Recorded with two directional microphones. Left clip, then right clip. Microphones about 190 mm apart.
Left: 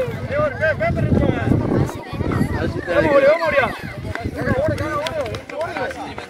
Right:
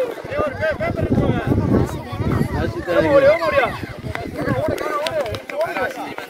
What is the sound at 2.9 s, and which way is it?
Speech, 60° right (ahead or behind).